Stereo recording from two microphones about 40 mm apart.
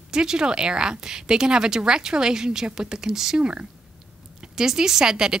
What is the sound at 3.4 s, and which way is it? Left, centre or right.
Speech, right.